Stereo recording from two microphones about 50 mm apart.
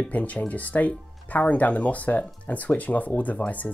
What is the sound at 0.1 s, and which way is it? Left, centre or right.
Speech, left.